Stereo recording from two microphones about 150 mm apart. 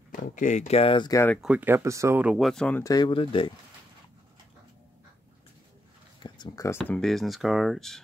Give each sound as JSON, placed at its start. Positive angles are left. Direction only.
{"t": 0.1, "sound": "speech", "side_deg": 60}
{"t": 1.1, "sound": "speech", "side_deg": 15}
{"t": 1.4, "sound": "speech", "side_deg": -10}
{"t": 2.3, "sound": "speech", "side_deg": 0}
{"t": 2.8, "sound": "speech", "side_deg": 25}
{"t": 3.1, "sound": "speech", "side_deg": 35}
{"t": 6.1, "sound": "a sound", "side_deg": 30}
{"t": 6.9, "sound": "speech", "side_deg": 5}